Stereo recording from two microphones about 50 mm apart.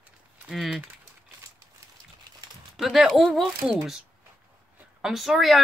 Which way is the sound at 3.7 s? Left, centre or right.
Centre.